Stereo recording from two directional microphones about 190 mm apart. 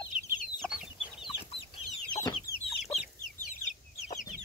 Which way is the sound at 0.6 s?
5° right (ahead or behind).